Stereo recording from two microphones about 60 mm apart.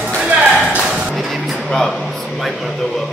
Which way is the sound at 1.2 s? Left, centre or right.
Centre.